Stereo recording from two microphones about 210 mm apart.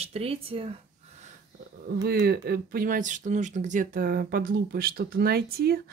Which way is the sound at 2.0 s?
50° right (ahead or behind).